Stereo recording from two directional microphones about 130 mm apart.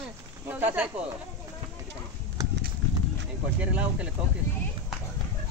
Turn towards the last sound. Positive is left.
turn(degrees=-10)  # may be behind; listen again after turning